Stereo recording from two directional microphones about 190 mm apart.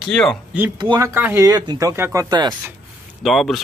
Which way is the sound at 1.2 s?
10° right (ahead or behind).